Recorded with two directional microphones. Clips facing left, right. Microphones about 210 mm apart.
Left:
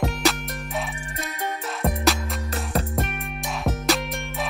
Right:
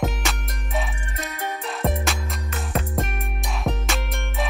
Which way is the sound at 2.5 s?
35° left (ahead or behind).